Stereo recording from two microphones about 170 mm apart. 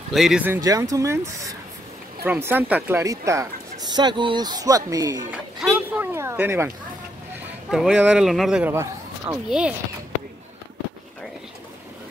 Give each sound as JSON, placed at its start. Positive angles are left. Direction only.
{"t": 0.1, "sound": "speech", "side_deg": 0}
{"t": 0.5, "sound": "a man's voice", "side_deg": -20}
{"t": 5.3, "sound": "a sound", "side_deg": -10}
{"t": 7.7, "sound": "speech", "side_deg": -5}
{"t": 8.7, "sound": "a sound", "side_deg": -20}
{"t": 9.5, "sound": "speech", "side_deg": -5}